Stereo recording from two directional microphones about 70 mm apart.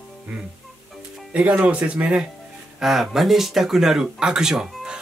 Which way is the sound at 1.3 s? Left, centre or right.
Centre.